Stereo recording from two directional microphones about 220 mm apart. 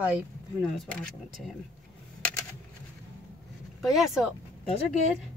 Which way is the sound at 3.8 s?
Centre (ahead or behind).